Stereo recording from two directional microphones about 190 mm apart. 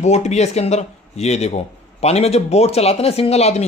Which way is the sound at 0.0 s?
35° left (ahead or behind).